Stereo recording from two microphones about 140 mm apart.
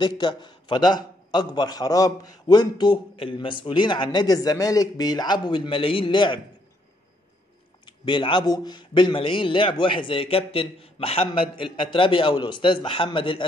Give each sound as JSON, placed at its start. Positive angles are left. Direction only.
{"t": 0.0, "sound": "a man's voice", "side_deg": 30}
{"t": 7.8, "sound": "a man's voice", "side_deg": 35}